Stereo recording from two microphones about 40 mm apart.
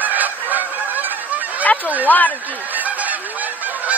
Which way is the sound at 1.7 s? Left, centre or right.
Left.